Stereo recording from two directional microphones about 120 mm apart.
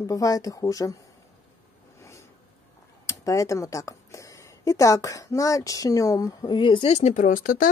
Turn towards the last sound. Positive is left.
turn(degrees=90)